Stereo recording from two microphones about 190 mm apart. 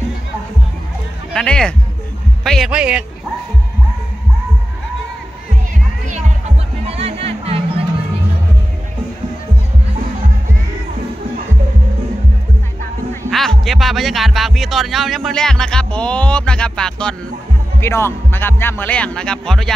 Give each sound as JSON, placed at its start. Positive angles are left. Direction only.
{"t": 1.3, "sound": "speech", "side_deg": 5}
{"t": 6.0, "sound": "music", "side_deg": -35}
{"t": 13.3, "sound": "speech", "side_deg": 0}